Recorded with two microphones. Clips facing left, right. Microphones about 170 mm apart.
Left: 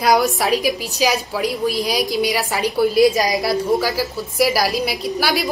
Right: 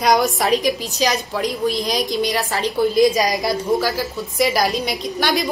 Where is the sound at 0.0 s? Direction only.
Centre (ahead or behind).